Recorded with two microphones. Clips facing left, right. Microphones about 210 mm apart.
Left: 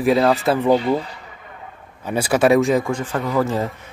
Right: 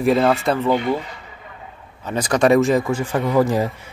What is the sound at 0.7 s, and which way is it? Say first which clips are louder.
Speech: left 4 dB; 35° left (ahead or behind).